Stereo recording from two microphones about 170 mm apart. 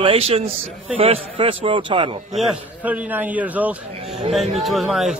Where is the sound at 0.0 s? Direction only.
35° right (ahead or behind).